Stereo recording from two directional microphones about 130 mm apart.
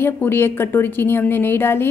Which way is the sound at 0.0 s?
15° left (ahead or behind).